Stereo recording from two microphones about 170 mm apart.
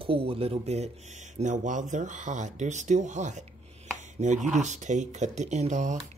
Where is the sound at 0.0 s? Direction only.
35° right (ahead or behind).